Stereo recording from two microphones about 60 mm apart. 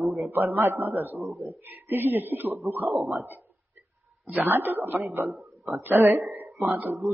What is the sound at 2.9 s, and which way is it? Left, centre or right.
Speech, right.